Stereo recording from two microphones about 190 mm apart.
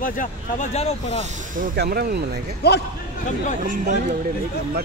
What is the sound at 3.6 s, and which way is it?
Speech, 40° right (ahead or behind).